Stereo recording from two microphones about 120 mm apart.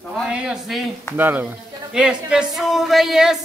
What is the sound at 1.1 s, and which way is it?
Speech, 15° right (ahead or behind).